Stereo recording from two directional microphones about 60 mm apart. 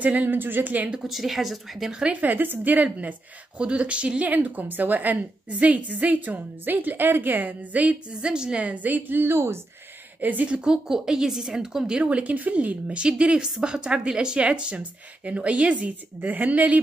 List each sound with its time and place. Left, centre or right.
0.0 s speech: right
1.0 s a woman's voice: centre
1.9 s a woman's voice: centre
8.2 s a woman's voice: centre; by 9.6 s right
10.2 s a woman's voice: right
12.0 s a woman's voice: right